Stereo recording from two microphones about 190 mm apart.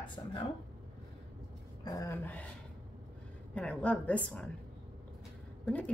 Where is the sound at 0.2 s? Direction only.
15° left (ahead or behind).